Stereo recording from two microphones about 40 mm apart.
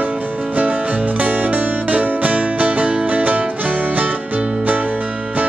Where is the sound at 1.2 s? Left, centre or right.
Right.